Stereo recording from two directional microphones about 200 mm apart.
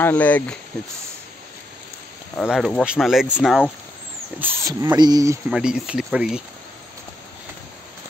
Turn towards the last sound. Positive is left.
turn(degrees=-5)  # may be behind; listen again after turning